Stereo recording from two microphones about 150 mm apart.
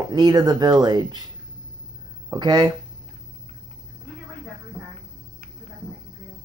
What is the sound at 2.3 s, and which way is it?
Speech, 30° right (ahead or behind).